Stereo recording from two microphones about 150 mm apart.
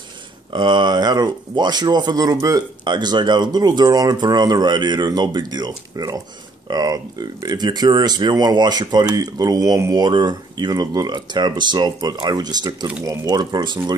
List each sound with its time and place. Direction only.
0.5 s speech: 30° right (ahead or behind)